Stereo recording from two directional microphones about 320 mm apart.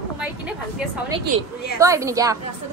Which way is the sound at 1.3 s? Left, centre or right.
Right.